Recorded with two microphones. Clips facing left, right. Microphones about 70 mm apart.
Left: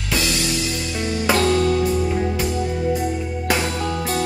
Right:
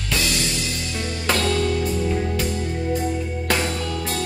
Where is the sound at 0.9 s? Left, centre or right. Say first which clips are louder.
Left 4 dB; centre.